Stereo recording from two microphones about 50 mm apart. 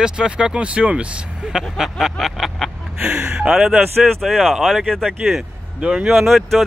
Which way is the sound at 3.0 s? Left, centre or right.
Right.